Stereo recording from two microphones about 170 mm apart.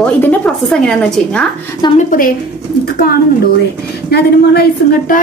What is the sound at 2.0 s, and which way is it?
A woman's voice, 55° left (ahead or behind).